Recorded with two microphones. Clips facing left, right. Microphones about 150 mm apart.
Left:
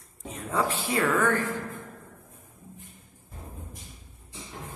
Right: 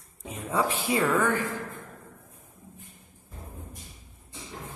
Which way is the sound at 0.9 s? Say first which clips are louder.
Right 1 dB; 10° right (ahead or behind).